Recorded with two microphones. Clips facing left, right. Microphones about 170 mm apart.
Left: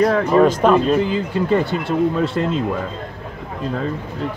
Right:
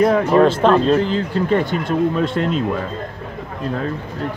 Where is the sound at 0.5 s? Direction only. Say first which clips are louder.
Right 1 dB; 10° left (ahead or behind).